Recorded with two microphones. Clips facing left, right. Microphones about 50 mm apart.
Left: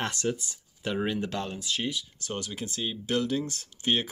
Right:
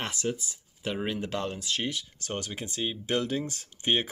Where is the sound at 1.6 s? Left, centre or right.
Right.